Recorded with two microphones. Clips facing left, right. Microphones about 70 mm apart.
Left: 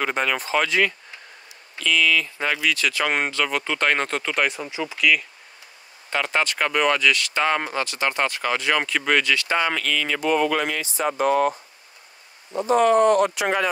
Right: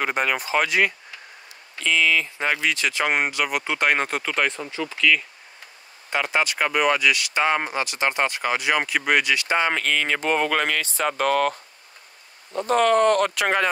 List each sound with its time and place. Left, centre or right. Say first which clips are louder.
0.0 s speech: even; centre
1.8 s speech: even; right; by 5.2 s centre
6.0 s speech: even; centre; by 11.5 s right
12.6 s speech: left 1 dB; right